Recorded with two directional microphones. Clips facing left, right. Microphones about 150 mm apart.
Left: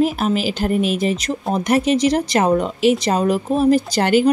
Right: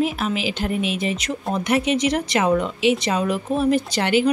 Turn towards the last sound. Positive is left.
turn(degrees=40)  # may be behind; listen again after turning